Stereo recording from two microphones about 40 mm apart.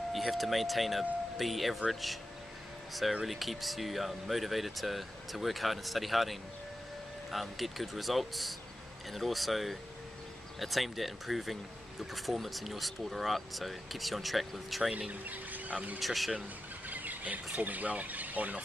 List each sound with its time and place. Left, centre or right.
0.1 s speech: centre
15.2 s speech: right
16.0 s speech: centre
16.9 s speech: right